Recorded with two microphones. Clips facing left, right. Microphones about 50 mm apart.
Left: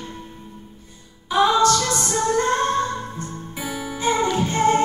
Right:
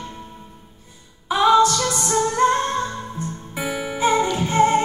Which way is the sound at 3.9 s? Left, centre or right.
Centre.